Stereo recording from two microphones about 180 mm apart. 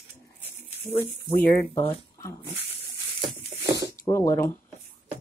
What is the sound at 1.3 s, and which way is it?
Speech, 10° left (ahead or behind).